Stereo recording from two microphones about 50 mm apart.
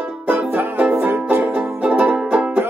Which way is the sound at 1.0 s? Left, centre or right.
Right.